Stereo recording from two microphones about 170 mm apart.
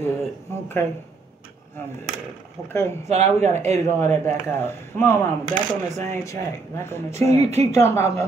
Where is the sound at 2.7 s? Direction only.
15° left (ahead or behind).